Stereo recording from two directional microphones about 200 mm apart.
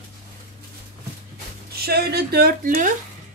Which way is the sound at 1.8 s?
50° right (ahead or behind).